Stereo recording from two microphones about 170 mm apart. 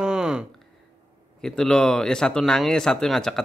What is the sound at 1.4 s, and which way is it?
A man's voice, 5° left (ahead or behind).